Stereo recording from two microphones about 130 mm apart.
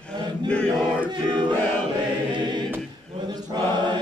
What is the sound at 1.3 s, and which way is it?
Choir, 35° right (ahead or behind).